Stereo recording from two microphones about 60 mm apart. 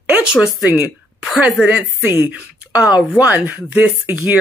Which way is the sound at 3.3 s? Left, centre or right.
Right.